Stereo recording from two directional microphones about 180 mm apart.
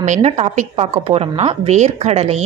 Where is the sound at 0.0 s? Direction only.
40° right (ahead or behind).